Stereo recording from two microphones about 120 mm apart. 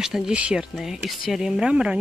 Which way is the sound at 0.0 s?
5° right (ahead or behind).